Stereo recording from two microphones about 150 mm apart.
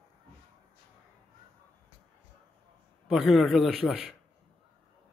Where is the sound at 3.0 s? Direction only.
Centre (ahead or behind).